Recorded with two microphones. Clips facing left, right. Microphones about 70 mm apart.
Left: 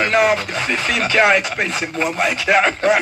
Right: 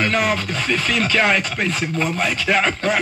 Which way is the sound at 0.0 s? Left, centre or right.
Centre.